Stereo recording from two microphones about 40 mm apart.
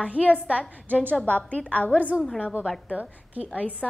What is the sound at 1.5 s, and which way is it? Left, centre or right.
Speech, left.